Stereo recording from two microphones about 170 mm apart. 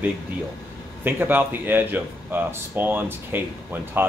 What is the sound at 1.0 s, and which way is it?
Speech, 10° right (ahead or behind).